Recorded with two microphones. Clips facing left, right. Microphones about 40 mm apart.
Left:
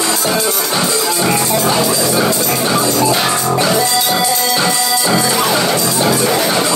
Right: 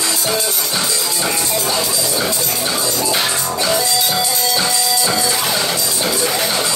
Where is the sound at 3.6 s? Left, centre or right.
Left.